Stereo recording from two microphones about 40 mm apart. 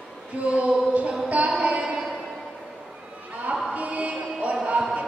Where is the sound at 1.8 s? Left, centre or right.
Centre.